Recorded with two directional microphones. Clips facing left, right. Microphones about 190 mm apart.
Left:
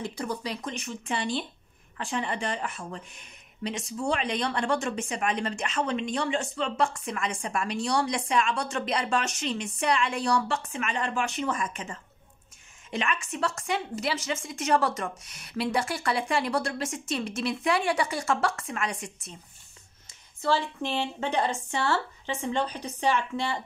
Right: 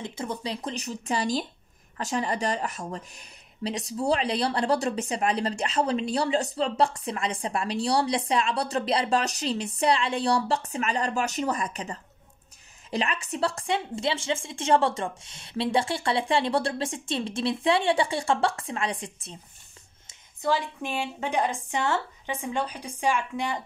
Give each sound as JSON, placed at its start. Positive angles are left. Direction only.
{"t": 0.0, "sound": "a woman's voice", "side_deg": -25}
{"t": 20.1, "sound": "speech", "side_deg": -15}